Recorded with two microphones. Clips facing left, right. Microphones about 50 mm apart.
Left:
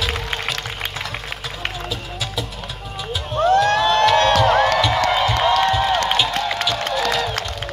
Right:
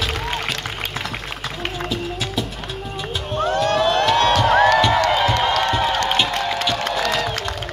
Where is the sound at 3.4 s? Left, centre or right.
Centre.